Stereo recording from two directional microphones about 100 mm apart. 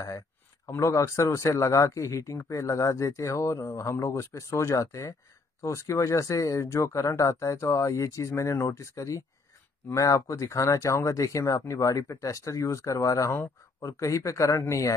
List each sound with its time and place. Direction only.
0.7 s speech: 30° left (ahead or behind)